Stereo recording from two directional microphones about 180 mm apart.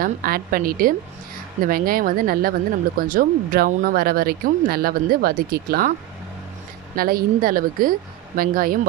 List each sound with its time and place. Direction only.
0.0 s a woman's voice: 55° right (ahead or behind)
7.0 s a woman's voice: 55° right (ahead or behind)